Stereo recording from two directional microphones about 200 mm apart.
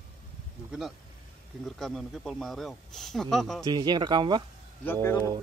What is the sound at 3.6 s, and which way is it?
Speech, 20° right (ahead or behind).